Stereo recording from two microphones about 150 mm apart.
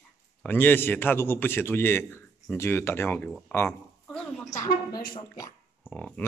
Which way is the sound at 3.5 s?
10° left (ahead or behind).